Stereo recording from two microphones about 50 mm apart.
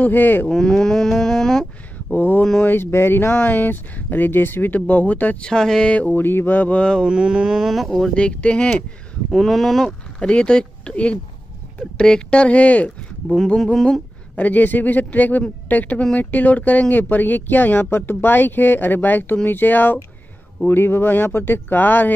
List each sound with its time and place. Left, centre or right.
0.0 s speech: left
0.5 s speech: centre
2.1 s speech: left
3.5 s speech: left
5.4 s speech: centre
5.9 s speech: left
6.1 s speech: left
6.8 s speech: centre
7.1 s a sound: centre
7.7 s speech: centre
8.1 s speech: left
9.3 s speech: centre
10.2 s speech: centre; by 22.1 s left